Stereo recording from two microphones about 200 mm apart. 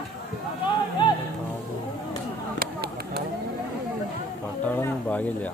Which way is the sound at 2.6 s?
55° right (ahead or behind).